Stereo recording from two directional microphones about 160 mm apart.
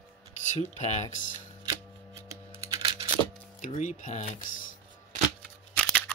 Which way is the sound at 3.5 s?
50° left (ahead or behind).